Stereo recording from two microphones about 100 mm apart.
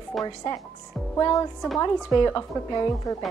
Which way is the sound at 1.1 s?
40° left (ahead or behind).